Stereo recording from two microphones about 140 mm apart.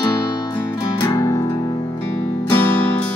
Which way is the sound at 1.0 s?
20° left (ahead or behind).